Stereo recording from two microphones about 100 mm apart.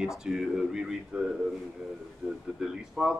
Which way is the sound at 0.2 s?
Centre (ahead or behind).